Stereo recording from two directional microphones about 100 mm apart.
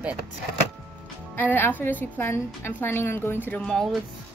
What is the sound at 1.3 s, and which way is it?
A woman's voice, 20° left (ahead or behind).